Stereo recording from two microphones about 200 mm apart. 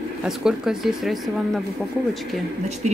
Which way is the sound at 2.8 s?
35° right (ahead or behind).